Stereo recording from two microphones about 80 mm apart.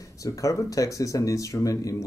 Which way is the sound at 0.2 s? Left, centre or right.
Left.